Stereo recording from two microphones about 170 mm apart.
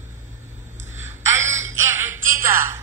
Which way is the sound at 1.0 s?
15° right (ahead or behind).